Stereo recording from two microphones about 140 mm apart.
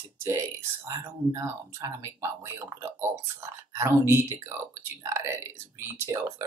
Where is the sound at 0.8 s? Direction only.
20° right (ahead or behind).